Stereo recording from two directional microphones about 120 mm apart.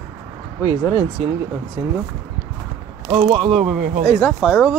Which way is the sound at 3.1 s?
55° right (ahead or behind).